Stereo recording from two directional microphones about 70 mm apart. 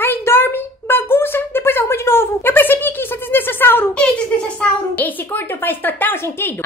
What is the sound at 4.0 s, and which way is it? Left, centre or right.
Speech, centre.